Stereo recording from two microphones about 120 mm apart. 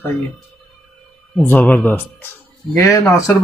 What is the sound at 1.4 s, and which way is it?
Speech, 15° left (ahead or behind).